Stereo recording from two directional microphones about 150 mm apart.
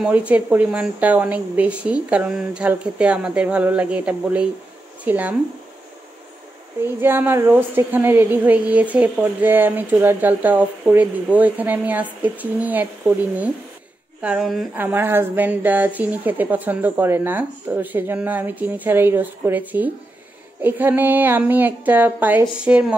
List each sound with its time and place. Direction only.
0.0 s a woman's voice: 10° right (ahead or behind)
6.8 s a woman's voice: 15° right (ahead or behind)
14.8 s a woman's voice: 15° right (ahead or behind)